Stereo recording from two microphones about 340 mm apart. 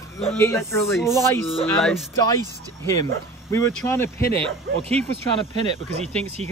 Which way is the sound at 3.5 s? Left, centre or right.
Centre.